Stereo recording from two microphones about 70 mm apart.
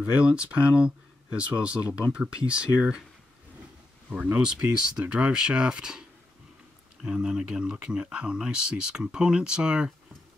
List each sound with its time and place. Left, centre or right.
0.0 s speech: centre
4.2 s speech: centre